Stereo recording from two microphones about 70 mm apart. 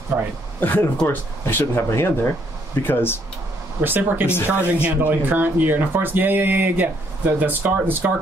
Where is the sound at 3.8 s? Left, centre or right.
Right.